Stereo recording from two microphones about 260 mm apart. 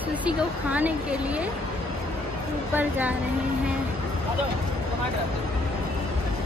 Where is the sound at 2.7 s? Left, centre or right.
Centre.